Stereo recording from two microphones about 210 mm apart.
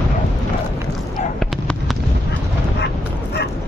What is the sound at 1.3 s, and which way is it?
Fireworks, centre (ahead or behind).